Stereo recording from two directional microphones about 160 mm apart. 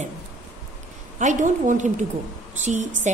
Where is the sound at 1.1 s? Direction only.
50° right (ahead or behind).